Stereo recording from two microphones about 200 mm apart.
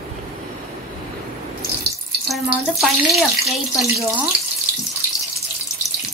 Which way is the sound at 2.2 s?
Centre (ahead or behind).